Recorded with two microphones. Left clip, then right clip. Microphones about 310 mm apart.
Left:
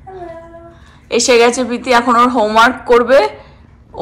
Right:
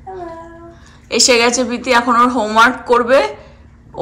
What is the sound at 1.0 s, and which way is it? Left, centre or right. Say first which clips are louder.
Speech: left 2 dB; centre.